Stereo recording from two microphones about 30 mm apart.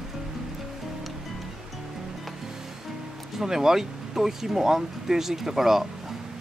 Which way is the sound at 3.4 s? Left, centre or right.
Centre.